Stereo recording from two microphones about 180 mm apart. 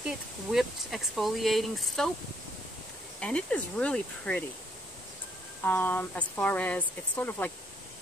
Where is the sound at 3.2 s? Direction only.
5° left (ahead or behind).